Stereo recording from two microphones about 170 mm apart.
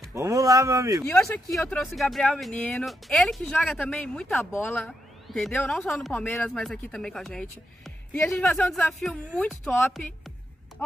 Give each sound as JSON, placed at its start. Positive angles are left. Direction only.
{"t": 0.1, "sound": "speech", "side_deg": -20}
{"t": 1.2, "sound": "a woman's voice", "side_deg": 5}